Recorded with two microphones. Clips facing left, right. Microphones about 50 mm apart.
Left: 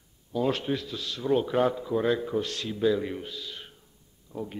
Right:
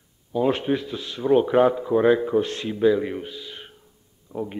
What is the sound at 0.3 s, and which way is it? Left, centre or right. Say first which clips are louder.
Speech: right 5 dB; right.